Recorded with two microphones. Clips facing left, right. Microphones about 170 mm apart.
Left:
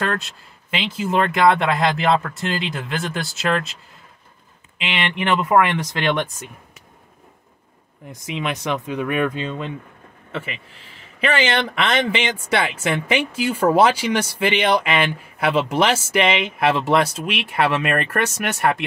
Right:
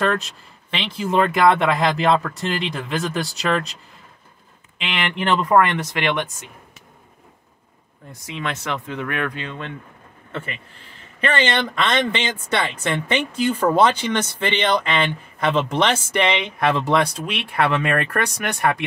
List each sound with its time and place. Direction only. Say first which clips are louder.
0.0 s speech: right 3 dB; centre (ahead or behind)
4.7 s speech: left 1 dB; centre (ahead or behind)
8.1 s speech: left 3 dB; 20° left (ahead or behind); by 18.9 s centre (ahead or behind)